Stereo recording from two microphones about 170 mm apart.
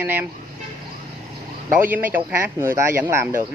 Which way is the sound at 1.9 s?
10° right (ahead or behind).